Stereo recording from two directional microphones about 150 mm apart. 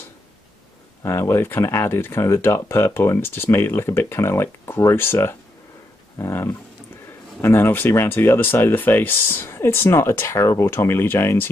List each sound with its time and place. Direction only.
1.0 s speech: 15° left (ahead or behind)